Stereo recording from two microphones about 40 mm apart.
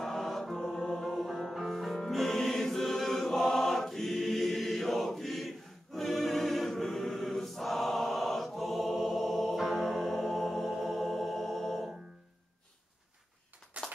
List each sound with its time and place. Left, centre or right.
0.0 s choir: centre
1.0 s music: centre
5.9 s choir: centre
9.7 s music: centre
13.7 s a sound: right